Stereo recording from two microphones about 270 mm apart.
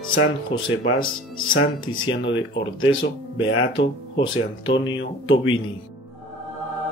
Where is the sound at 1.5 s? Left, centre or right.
Left.